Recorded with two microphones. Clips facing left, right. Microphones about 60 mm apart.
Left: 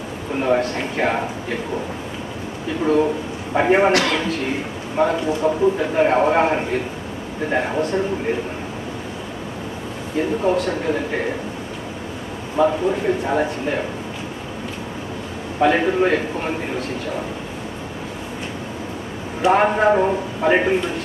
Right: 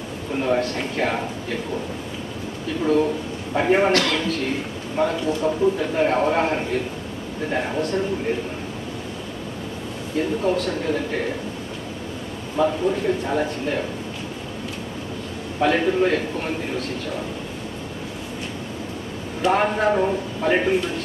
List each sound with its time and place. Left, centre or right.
0.4 s a man's voice: left
2.8 s a man's voice: left
10.5 s speech: centre
12.5 s a man's voice: left
15.6 s a man's voice: left
19.5 s a man's voice: left